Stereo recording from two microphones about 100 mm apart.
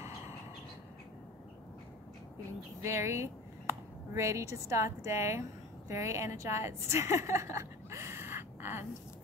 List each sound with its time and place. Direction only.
2.8 s a woman's voice: 30° right (ahead or behind)